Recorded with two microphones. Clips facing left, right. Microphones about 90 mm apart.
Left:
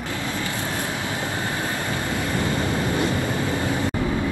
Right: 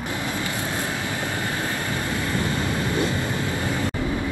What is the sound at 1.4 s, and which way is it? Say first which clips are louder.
Vehicle: left 1 dB; 20° left (ahead or behind).